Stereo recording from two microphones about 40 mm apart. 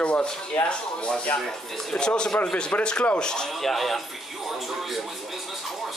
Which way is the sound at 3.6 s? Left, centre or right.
Centre.